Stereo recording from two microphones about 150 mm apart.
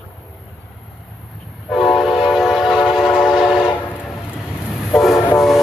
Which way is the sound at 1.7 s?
Centre (ahead or behind).